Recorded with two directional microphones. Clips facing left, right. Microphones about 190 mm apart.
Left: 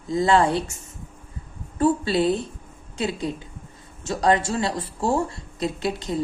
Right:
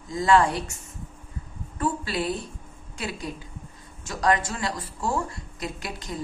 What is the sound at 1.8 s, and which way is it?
A woman's voice, 25° left (ahead or behind).